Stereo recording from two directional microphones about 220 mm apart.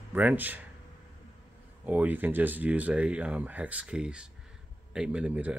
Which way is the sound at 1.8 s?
5° right (ahead or behind).